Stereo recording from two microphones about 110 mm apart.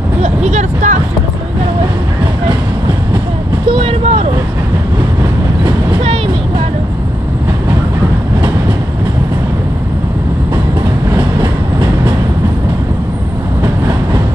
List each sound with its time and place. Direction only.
0.2 s speech: 90° right
3.7 s speech: 60° right (ahead or behind)